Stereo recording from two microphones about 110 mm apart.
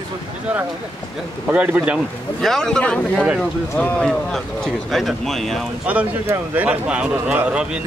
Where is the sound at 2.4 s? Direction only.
5° left (ahead or behind).